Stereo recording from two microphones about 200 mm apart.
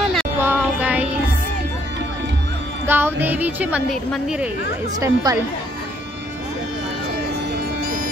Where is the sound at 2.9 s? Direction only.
10° right (ahead or behind).